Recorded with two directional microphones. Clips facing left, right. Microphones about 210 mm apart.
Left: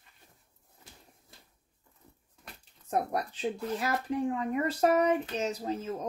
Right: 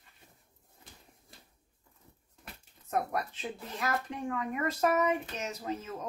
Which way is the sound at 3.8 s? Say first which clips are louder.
Left 2 dB; 30° left (ahead or behind).